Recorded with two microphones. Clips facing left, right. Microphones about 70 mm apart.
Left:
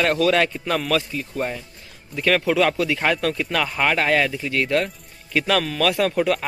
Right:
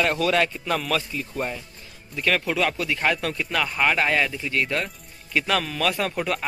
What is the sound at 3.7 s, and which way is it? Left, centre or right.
Speech, left.